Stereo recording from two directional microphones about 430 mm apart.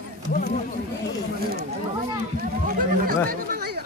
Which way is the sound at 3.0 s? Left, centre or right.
Right.